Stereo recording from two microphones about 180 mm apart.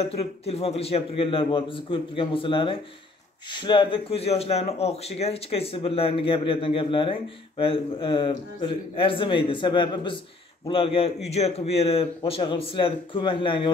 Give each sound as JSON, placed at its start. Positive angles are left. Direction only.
{"t": 0.0, "sound": "a man's voice", "side_deg": 35}